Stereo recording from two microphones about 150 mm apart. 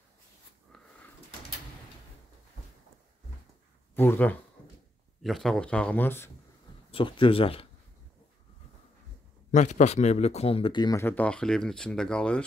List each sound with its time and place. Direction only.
3.9 s speech: 15° left (ahead or behind)
5.2 s speech: centre (ahead or behind)
6.9 s speech: 35° left (ahead or behind)
9.5 s a man's voice: 55° left (ahead or behind); by 12.4 s 5° left (ahead or behind)